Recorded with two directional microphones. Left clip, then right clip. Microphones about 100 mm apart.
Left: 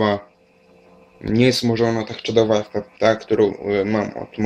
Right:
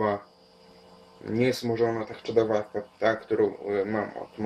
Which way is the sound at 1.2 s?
20° left (ahead or behind).